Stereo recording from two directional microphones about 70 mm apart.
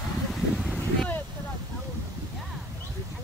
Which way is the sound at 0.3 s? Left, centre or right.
Centre.